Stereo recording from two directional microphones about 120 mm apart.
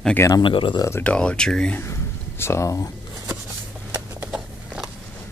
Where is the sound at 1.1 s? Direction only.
5° left (ahead or behind).